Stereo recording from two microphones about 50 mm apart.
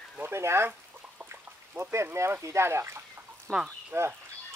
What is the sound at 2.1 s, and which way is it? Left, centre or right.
Speech, right.